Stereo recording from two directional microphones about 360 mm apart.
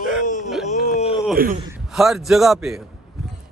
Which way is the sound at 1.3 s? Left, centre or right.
Right.